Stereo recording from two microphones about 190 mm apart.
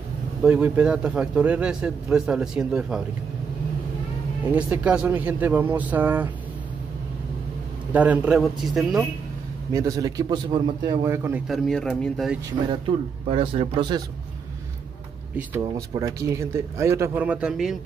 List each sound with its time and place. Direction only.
0.4 s a man's voice: 5° right (ahead or behind)
4.6 s speech: 5° right (ahead or behind)
7.9 s a man's voice: 10° right (ahead or behind)
9.7 s speech: 15° right (ahead or behind)
11.4 s a man's voice: centre (ahead or behind)
12.6 s speech: 30° right (ahead or behind)
15.9 s speech: 15° right (ahead or behind)